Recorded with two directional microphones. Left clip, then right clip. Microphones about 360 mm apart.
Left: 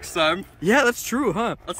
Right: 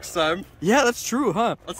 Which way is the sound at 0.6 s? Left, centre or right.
Centre.